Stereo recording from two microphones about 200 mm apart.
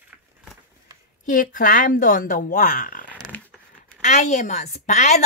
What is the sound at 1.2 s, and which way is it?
A woman's voice, 40° left (ahead or behind).